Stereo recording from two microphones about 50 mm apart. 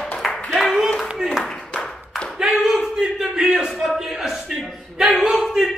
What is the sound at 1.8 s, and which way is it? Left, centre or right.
Clapping, centre.